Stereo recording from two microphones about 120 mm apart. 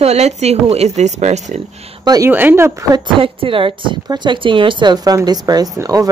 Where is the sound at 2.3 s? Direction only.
15° right (ahead or behind).